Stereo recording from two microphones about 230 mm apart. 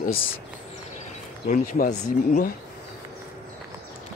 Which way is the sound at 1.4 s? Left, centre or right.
Left.